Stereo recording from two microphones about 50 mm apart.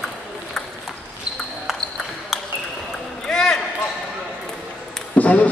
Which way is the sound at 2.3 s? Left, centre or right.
Centre.